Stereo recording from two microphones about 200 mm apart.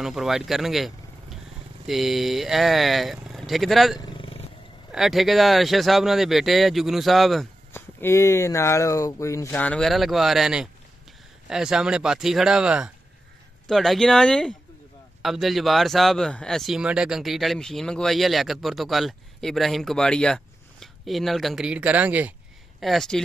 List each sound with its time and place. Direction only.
0.0 s speech: centre (ahead or behind)
4.0 s purr: 25° left (ahead or behind)
4.9 s speech: centre (ahead or behind)
7.7 s speech: 10° left (ahead or behind)